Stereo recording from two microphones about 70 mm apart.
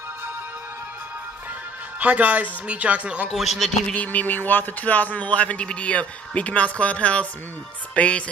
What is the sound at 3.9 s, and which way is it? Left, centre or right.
Speech, left.